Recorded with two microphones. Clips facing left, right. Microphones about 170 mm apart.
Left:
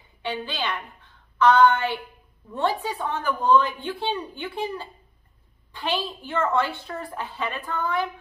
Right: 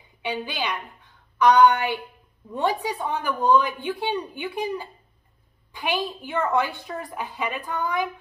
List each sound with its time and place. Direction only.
0.2 s a woman's voice: 15° right (ahead or behind)